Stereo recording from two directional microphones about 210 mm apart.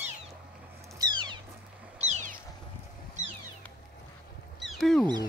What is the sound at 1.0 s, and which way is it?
Cat, 20° right (ahead or behind).